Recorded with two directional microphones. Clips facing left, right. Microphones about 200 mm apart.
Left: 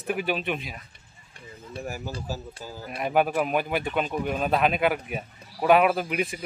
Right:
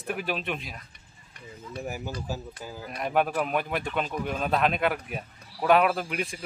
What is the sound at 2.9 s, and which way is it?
Speech, 5° left (ahead or behind).